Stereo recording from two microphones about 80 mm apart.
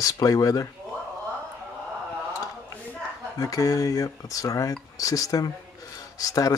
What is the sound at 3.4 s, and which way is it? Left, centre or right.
Speech, left.